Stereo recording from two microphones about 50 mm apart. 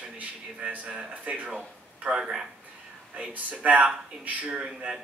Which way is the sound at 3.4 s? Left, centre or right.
Right.